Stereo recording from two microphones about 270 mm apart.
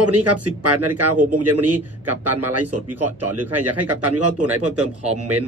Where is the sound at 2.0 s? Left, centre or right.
Centre.